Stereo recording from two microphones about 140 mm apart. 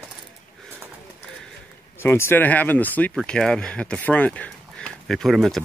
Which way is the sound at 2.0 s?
15° left (ahead or behind).